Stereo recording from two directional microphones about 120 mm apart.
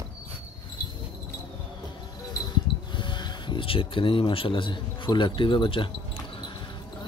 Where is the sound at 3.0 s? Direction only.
40° left (ahead or behind).